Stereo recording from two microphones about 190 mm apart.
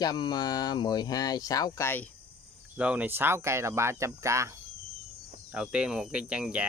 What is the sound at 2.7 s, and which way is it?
Speech, 5° right (ahead or behind).